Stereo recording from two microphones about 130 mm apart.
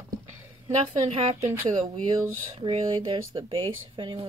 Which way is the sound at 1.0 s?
55° right (ahead or behind).